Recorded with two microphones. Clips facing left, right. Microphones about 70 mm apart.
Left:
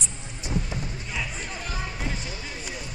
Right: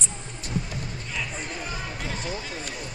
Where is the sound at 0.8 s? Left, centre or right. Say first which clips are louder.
Left 1 dB; centre.